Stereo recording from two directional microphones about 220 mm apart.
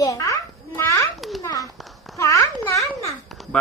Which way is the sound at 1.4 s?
15° left (ahead or behind).